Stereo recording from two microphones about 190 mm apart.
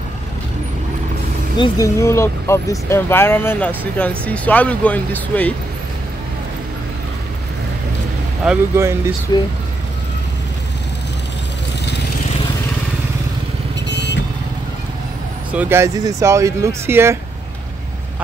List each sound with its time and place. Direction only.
1.6 s speech: 15° left (ahead or behind)
8.5 s speech: 15° right (ahead or behind)
13.8 s vehicle: 65° left (ahead or behind)
15.5 s speech: 10° right (ahead or behind)